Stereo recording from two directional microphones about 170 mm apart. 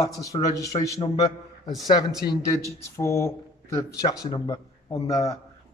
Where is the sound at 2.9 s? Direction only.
15° left (ahead or behind).